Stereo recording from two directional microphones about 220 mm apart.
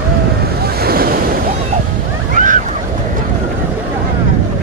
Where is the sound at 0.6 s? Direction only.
45° right (ahead or behind).